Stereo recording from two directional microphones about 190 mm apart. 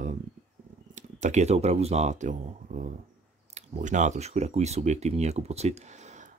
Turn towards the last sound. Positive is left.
turn(degrees=-40)  # may be behind; listen again after turning